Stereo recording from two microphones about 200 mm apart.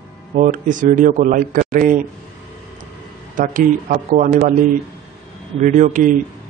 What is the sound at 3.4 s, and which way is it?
Speech, 40° right (ahead or behind).